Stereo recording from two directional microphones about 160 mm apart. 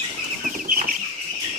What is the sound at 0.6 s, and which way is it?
Chicken, 55° right (ahead or behind).